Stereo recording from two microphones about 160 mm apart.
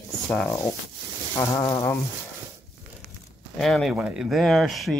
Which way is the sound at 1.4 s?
20° left (ahead or behind).